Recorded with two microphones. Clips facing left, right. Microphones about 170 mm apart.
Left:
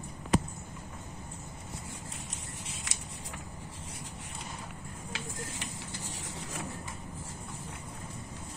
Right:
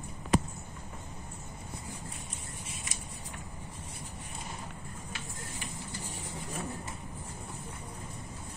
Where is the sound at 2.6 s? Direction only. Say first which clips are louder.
Even; 80° left.